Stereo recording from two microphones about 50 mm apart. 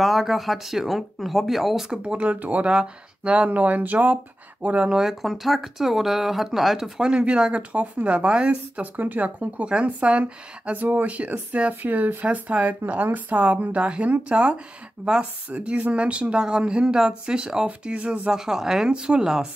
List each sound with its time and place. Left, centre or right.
0.0 s speech: centre
2.2 s speech: right
2.7 s speech: centre
4.6 s speech: centre
5.2 s speech: centre
7.0 s speech: centre
8.9 s speech: right
10.7 s speech: right
18.3 s speech: centre